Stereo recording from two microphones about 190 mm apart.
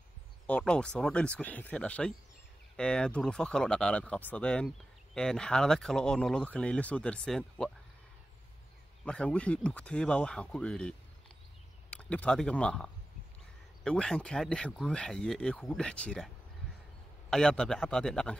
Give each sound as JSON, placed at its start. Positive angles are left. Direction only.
{"t": 0.5, "sound": "speech", "side_deg": 5}
{"t": 9.0, "sound": "speech", "side_deg": 5}
{"t": 17.3, "sound": "speech", "side_deg": 5}